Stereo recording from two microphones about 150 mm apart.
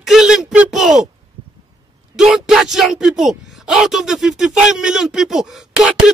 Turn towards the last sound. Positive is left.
turn(degrees=-5)  # may be behind; listen again after turning